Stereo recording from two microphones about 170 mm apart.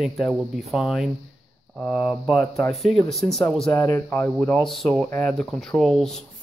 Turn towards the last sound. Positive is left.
turn(degrees=0)  # may be behind; listen again after turning